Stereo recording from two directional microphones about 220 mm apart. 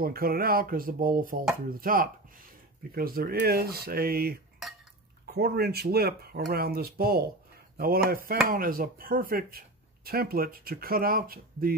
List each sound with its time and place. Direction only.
0.0 s speech: 40° right (ahead or behind)